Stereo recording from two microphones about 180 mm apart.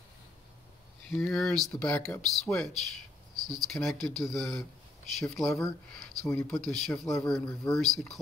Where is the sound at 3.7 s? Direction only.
Centre (ahead or behind).